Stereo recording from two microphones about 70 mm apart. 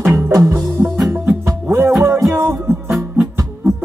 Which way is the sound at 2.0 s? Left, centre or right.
Right.